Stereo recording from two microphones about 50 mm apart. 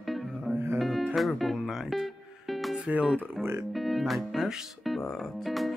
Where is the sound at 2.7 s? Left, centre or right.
Right.